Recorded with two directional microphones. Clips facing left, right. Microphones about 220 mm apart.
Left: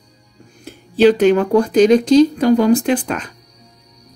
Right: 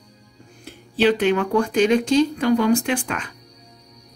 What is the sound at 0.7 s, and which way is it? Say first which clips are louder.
Speech: left 7 dB; 45° left (ahead or behind).